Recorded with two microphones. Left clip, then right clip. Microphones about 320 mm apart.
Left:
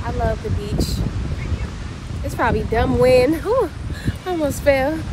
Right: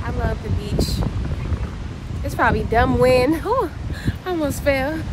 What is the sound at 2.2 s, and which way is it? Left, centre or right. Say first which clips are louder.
Speech: right 1 dB; centre.